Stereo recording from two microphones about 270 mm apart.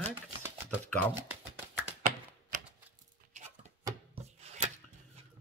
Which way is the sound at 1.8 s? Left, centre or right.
Right.